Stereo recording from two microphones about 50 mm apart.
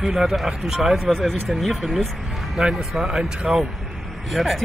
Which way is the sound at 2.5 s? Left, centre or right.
Centre.